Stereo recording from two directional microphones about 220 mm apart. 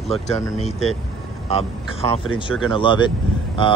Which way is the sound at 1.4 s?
25° left (ahead or behind).